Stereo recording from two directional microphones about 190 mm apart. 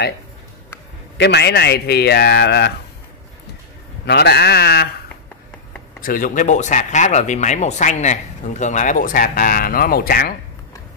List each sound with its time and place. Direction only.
1.1 s a man's voice: 60° left (ahead or behind)
4.0 s a man's voice: 60° left (ahead or behind)
5.9 s speech: 50° left (ahead or behind)